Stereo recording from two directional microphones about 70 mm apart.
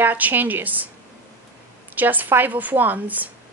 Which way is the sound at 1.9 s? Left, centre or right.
Right.